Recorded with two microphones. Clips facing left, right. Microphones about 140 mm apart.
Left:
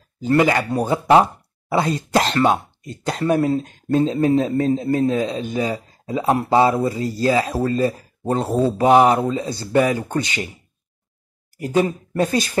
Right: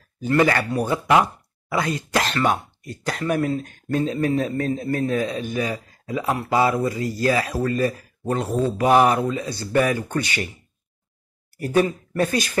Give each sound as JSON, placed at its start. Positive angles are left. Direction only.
{"t": 0.4, "sound": "speech", "side_deg": 20}
{"t": 11.5, "sound": "speech", "side_deg": 15}